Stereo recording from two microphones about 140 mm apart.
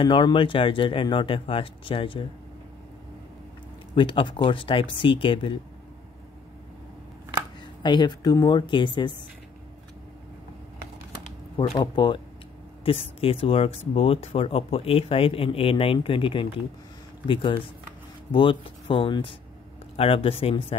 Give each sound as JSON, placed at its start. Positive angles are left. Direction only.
{"t": 0.0, "sound": "speech", "side_deg": 35}
{"t": 3.9, "sound": "speech", "side_deg": 35}
{"t": 7.8, "sound": "speech", "side_deg": 30}
{"t": 11.8, "sound": "speech", "side_deg": 35}